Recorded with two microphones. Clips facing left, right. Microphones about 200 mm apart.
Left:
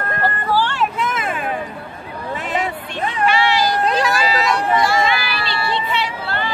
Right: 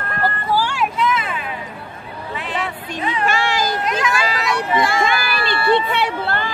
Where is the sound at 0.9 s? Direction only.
50° left (ahead or behind).